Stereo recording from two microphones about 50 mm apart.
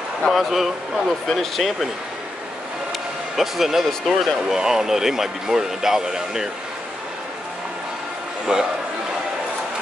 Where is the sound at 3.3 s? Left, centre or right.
Centre.